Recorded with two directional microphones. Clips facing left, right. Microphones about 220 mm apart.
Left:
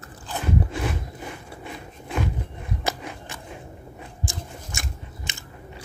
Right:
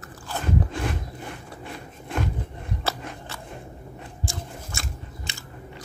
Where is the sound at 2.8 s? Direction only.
15° left (ahead or behind).